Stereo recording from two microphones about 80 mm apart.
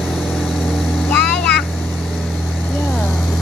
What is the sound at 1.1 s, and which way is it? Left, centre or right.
Vehicle, centre.